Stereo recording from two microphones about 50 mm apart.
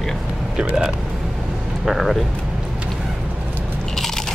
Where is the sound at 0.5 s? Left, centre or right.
Centre.